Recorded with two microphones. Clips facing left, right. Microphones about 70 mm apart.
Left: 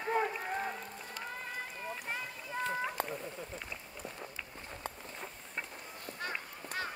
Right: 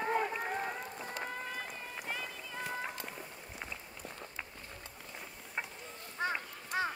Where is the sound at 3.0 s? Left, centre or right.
Left.